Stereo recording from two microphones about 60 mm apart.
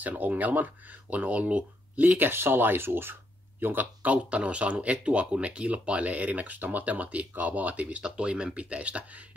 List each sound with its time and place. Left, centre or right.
0.0 s speech: right